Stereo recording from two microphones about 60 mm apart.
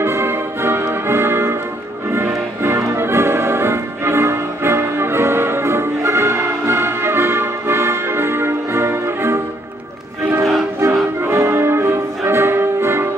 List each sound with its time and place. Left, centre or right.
0.0 s music: right
10.8 s music: right